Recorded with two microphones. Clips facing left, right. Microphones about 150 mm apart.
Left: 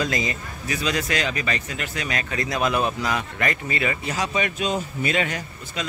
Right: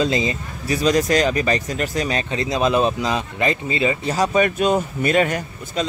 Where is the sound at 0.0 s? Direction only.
25° right (ahead or behind).